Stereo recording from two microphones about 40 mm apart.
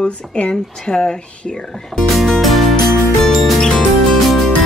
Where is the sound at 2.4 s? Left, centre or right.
Centre.